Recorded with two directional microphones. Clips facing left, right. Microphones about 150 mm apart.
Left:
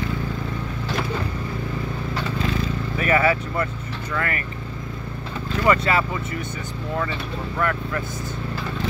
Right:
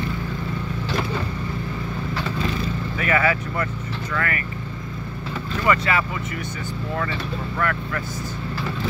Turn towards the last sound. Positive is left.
turn(degrees=20)  # may be behind; listen again after turning